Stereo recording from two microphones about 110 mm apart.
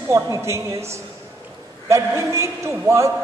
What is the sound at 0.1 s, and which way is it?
Speech, 25° right (ahead or behind).